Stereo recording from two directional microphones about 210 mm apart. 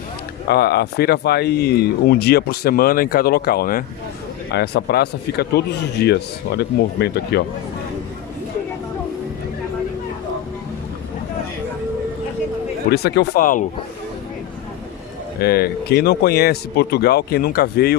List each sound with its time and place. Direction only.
0.5 s speech: 50° left (ahead or behind)
12.9 s speech: 50° left (ahead or behind)
15.4 s speech: 50° left (ahead or behind)